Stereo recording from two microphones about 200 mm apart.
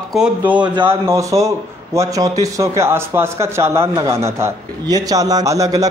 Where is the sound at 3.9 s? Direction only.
25° right (ahead or behind).